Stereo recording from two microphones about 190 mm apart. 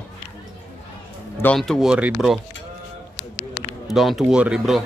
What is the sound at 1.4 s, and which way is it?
Speech, 5° left (ahead or behind).